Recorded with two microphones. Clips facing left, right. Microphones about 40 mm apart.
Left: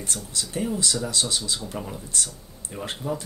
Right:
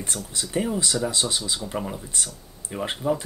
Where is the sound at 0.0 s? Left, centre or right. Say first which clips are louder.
Right 1 dB; right.